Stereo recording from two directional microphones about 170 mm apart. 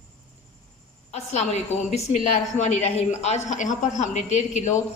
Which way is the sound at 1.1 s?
40° left (ahead or behind).